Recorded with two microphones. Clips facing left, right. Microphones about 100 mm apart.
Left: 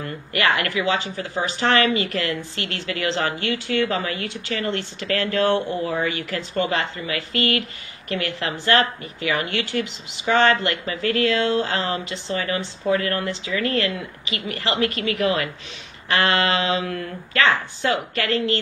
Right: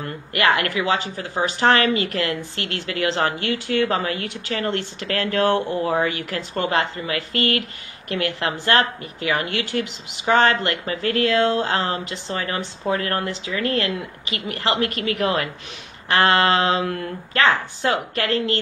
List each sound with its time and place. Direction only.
0.4 s speech: 50° right (ahead or behind)
16.2 s a sound: 45° right (ahead or behind)
17.8 s speech: 45° right (ahead or behind)